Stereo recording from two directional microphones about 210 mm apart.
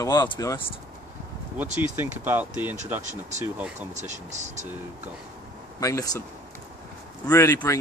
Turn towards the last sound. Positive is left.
turn(degrees=15)  # may be behind; listen again after turning